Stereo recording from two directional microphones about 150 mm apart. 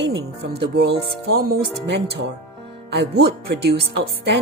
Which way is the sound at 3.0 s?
90° right.